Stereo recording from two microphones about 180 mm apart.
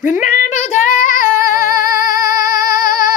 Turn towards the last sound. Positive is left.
turn(degrees=50)  # may be behind; listen again after turning